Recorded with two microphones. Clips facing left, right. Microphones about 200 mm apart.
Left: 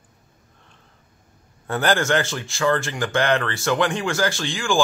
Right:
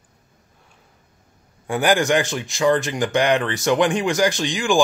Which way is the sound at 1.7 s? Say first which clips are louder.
Right 2 dB; 15° right (ahead or behind).